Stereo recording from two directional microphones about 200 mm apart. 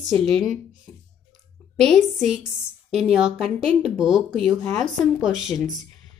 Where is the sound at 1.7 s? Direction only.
5° left (ahead or behind).